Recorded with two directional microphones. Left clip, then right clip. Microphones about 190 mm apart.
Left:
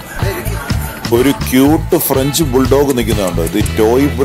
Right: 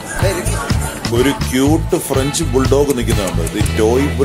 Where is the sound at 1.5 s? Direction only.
30° left (ahead or behind).